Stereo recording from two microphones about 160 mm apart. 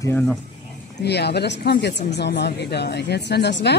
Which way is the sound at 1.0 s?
90° left.